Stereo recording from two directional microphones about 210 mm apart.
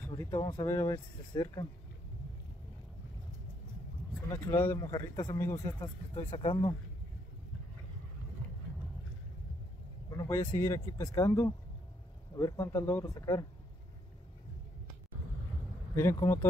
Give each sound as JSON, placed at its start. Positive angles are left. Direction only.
{"t": 0.2, "sound": "speech", "side_deg": 20}
{"t": 4.3, "sound": "speech", "side_deg": 15}
{"t": 10.1, "sound": "speech", "side_deg": 15}
{"t": 15.9, "sound": "speech", "side_deg": 10}